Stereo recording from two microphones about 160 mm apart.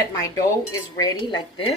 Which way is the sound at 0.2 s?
20° left (ahead or behind).